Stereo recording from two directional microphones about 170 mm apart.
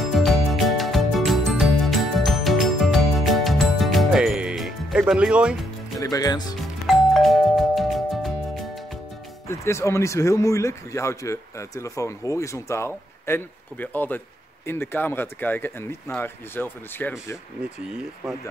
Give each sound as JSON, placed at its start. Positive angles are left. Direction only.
{"t": 0.0, "sound": "music", "side_deg": 0}
{"t": 5.9, "sound": "speech", "side_deg": 20}
{"t": 6.9, "sound": "music", "side_deg": 0}
{"t": 9.5, "sound": "speech", "side_deg": 15}